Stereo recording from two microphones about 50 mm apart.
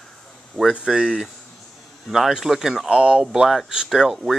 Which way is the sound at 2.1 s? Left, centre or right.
Centre.